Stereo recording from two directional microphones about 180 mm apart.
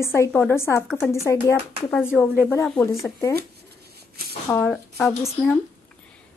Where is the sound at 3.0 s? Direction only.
15° left (ahead or behind).